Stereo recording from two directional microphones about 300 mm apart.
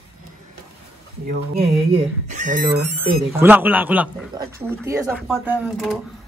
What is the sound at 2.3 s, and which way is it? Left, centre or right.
Speech, right.